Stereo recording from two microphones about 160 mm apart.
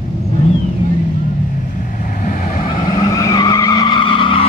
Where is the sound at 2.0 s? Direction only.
55° left (ahead or behind).